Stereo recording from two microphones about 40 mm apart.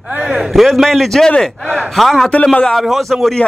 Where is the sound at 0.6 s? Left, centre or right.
Centre.